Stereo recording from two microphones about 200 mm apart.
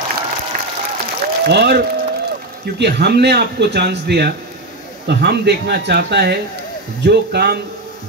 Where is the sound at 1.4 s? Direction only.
55° right (ahead or behind).